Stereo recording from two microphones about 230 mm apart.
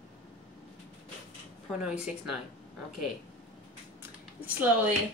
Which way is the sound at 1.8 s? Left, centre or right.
Centre.